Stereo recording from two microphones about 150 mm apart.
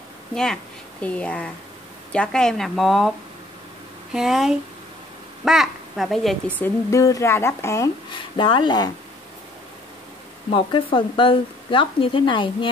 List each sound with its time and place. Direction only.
0.3 s speech: 5° left (ahead or behind)
6.6 s a woman's voice: 20° left (ahead or behind)
8.1 s speech: 30° left (ahead or behind)
10.5 s speech: 35° left (ahead or behind)